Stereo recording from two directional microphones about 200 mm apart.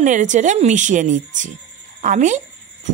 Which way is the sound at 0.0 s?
40° right (ahead or behind).